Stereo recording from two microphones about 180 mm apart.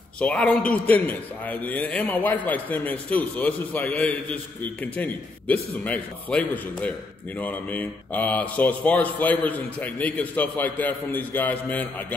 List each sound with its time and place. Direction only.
0.2 s a man's voice: 5° left (ahead or behind)